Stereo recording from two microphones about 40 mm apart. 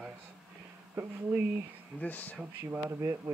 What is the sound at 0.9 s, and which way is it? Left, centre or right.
Speech, right.